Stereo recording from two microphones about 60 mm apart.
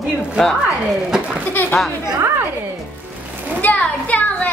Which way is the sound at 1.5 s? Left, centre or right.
Left.